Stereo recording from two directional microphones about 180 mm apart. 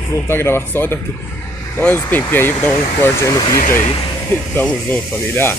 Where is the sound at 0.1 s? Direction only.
15° left (ahead or behind).